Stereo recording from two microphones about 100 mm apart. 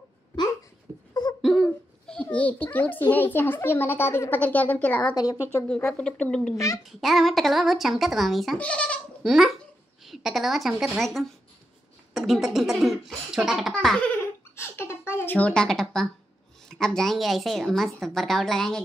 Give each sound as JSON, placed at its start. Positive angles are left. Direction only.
{"t": 1.4, "sound": "a sound", "side_deg": 0}
{"t": 2.3, "sound": "a woman's voice", "side_deg": 15}
{"t": 5.1, "sound": "a woman's voice", "side_deg": 40}
{"t": 5.9, "sound": "a woman's voice", "side_deg": 10}
{"t": 8.5, "sound": "speech", "side_deg": 15}
{"t": 9.2, "sound": "a woman's voice", "side_deg": 0}
{"t": 14.5, "sound": "a woman's voice", "side_deg": 25}